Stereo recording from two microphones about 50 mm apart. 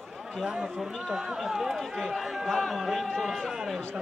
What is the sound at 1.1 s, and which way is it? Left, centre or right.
Speech, centre.